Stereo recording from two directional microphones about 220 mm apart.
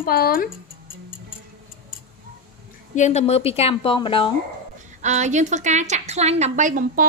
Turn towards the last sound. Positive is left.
turn(degrees=-35)  # may be behind; listen again after turning